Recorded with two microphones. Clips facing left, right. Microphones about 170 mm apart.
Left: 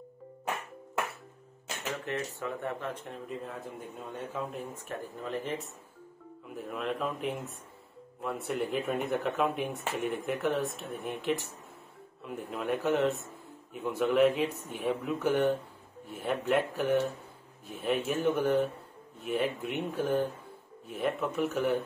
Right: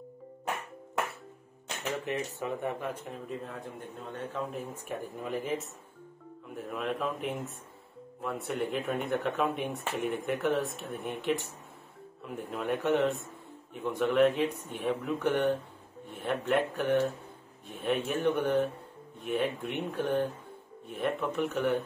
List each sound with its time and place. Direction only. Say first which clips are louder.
1.9 s speech: right 2 dB; 15° right (ahead or behind); by 4.8 s centre (ahead or behind)
4.8 s speech: right 1 dB; 10° right (ahead or behind)